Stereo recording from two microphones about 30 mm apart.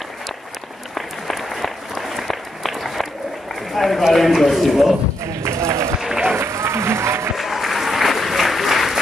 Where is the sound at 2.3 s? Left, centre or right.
Centre.